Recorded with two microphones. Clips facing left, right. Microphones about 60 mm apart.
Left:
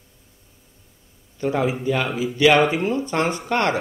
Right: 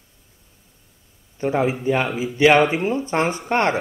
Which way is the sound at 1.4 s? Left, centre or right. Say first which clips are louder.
Right 1 dB; right.